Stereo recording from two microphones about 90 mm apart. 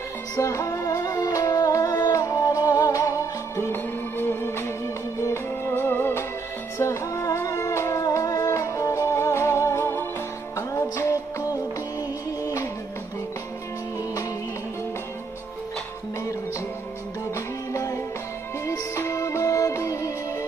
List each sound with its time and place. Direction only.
0.4 s music: 35° left (ahead or behind)
17.7 s music: 35° left (ahead or behind)